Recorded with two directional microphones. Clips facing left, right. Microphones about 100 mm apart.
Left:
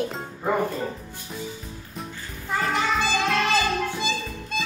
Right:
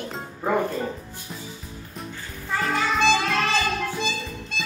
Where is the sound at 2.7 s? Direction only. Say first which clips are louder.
Right 4 dB; centre (ahead or behind).